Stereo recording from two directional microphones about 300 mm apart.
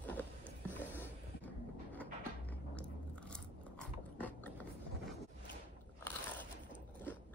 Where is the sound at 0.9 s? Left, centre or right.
Centre.